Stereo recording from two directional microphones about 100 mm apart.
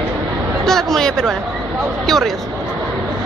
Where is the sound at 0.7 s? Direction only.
5° left (ahead or behind).